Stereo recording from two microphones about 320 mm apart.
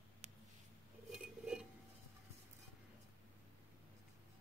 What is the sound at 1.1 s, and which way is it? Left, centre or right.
Dishes, centre.